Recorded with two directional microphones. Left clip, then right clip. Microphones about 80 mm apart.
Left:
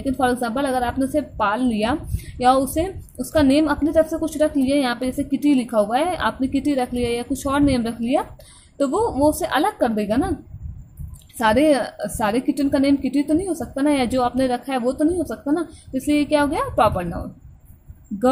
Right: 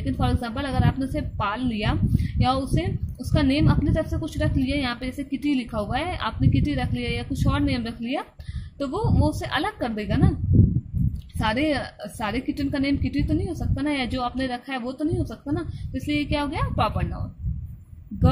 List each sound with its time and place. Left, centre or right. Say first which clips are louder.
0.0 s a woman's voice: left 8 dB; left
11.3 s a woman's voice: left 8 dB; left